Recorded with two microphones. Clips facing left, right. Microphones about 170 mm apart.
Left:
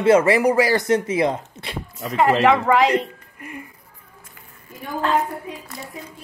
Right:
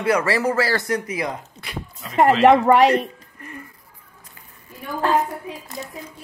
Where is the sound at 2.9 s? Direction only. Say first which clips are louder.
Right 1 dB; 10° left (ahead or behind).